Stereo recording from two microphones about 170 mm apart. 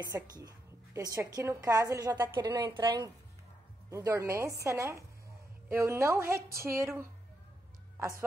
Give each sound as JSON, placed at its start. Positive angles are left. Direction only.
{"t": 0.0, "sound": "a woman's voice", "side_deg": -20}
{"t": 3.9, "sound": "a woman's voice", "side_deg": -15}